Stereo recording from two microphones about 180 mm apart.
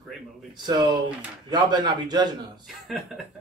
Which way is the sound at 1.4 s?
25° right (ahead or behind).